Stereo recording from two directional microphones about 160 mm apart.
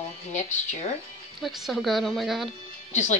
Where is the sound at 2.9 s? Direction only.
50° left (ahead or behind).